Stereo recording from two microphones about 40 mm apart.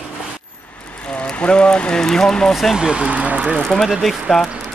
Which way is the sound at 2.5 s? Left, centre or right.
Centre.